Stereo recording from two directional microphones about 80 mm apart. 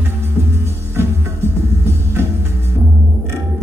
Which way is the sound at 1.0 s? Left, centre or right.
Right.